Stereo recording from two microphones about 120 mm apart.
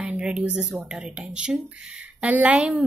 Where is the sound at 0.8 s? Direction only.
5° right (ahead or behind).